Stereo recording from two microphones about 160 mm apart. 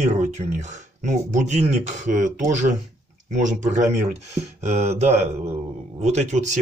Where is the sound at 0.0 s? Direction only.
45° right (ahead or behind).